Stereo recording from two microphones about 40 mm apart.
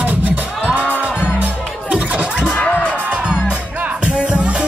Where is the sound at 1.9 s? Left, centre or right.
Right.